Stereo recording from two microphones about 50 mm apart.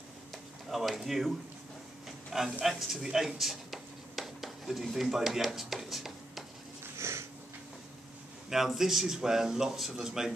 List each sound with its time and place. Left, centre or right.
0.7 s speech: centre
2.6 s speech: centre
7.0 s a sound: right
8.5 s speech: centre